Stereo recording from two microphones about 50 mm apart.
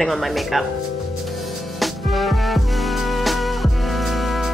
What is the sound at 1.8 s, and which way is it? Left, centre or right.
Music, centre.